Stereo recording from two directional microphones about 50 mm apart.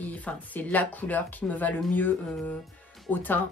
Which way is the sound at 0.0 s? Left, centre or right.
Left.